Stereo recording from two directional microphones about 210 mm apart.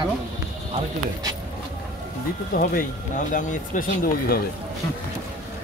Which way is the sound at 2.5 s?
40° left (ahead or behind).